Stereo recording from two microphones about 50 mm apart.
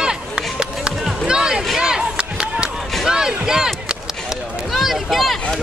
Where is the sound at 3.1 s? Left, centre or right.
Centre.